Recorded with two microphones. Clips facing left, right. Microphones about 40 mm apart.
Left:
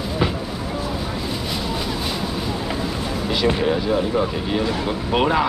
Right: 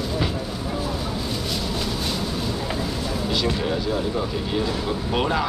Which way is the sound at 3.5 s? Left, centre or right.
Left.